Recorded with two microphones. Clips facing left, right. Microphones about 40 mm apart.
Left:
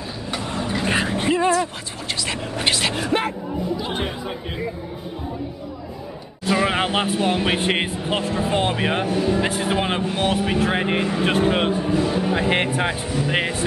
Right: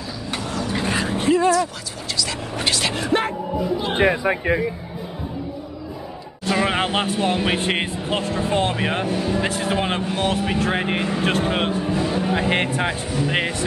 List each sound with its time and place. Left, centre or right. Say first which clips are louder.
0.4 s a sound: even; left
2.8 s speech: right 1 dB; centre
4.0 s speech: right 9 dB; right
6.4 s speech: even; centre